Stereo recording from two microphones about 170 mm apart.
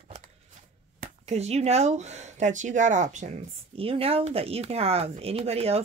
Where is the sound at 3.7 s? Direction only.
35° right (ahead or behind).